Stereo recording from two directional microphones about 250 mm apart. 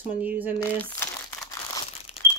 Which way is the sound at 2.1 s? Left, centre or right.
Left.